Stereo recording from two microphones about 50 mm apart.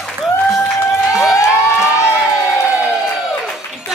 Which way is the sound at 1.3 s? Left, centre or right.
Left.